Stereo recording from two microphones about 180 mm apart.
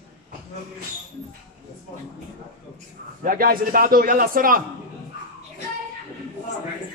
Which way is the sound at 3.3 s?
50° right (ahead or behind).